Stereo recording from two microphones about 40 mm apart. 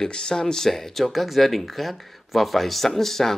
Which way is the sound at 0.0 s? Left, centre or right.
Centre.